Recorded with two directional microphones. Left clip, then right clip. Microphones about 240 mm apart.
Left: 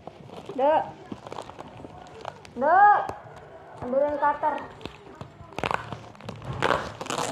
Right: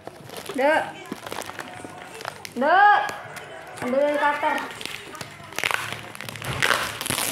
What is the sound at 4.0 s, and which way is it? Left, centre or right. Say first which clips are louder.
Speech: right 2 dB; right.